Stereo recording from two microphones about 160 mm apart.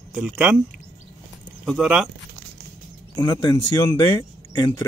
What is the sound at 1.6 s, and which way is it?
Speech, centre (ahead or behind).